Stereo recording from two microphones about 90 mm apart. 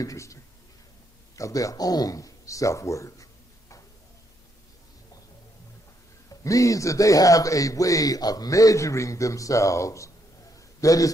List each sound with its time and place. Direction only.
0.0 s speech: 40° left (ahead or behind)
6.4 s a man's voice: 40° left (ahead or behind)